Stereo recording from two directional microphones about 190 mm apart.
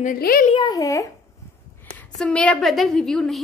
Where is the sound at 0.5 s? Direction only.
25° left (ahead or behind).